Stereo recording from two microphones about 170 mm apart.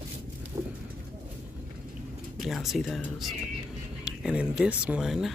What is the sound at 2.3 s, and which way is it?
Speech, centre (ahead or behind).